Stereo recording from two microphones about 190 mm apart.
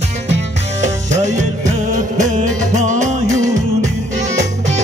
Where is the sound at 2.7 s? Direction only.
40° right (ahead or behind).